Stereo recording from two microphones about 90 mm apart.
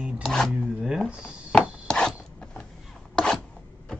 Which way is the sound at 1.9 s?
5° left (ahead or behind).